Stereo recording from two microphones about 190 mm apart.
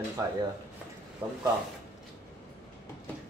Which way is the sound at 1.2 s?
10° right (ahead or behind).